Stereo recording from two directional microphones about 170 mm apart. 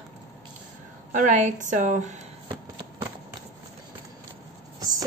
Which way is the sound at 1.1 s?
45° right (ahead or behind).